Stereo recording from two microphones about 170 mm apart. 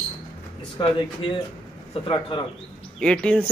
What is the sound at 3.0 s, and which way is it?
Speech, 5° left (ahead or behind).